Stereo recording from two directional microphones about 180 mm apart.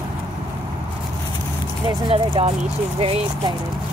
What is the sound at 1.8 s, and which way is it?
Speech, 25° right (ahead or behind).